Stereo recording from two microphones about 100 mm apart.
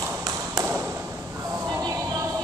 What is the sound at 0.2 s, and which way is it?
Tap, 25° right (ahead or behind).